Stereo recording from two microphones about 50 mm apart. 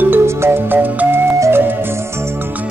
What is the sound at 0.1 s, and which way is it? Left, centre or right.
Music, right.